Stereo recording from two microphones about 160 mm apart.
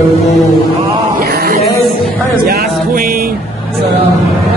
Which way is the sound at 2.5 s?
65° right (ahead or behind).